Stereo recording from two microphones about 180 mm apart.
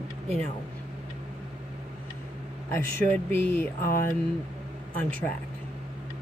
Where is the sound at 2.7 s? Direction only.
10° left (ahead or behind).